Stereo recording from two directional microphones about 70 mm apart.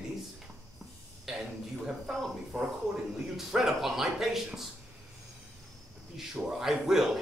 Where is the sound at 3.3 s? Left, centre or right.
Centre.